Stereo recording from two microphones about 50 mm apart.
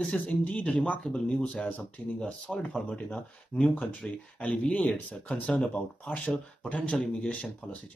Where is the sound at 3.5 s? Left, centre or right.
Left.